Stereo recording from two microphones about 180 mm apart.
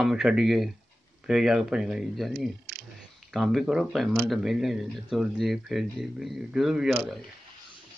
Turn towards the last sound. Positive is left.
turn(degrees=0)  # may be behind; listen again after turning